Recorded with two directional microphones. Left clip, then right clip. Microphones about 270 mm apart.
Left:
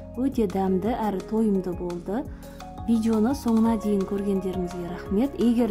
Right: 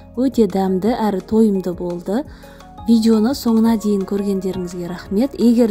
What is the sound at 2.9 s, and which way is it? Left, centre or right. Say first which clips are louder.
A woman's voice: right 8 dB; centre.